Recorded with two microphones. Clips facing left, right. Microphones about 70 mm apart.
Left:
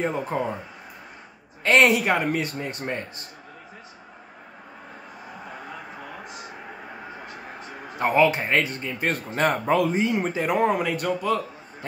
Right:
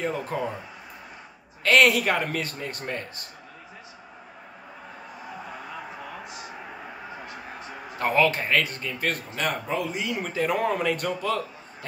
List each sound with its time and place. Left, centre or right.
0.0 s speech: left
1.6 s speech: left
8.0 s speech: centre
9.3 s speech: left
9.7 s speech: left
9.9 s speech: left
10.8 s a man's voice: centre